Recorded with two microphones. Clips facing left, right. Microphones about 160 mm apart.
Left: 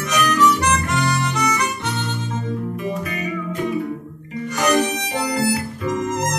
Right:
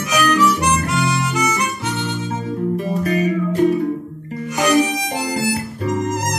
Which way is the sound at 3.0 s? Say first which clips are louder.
Right 8 dB; 40° right (ahead or behind).